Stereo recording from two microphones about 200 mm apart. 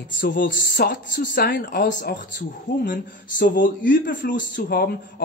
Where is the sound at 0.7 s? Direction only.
50° left (ahead or behind).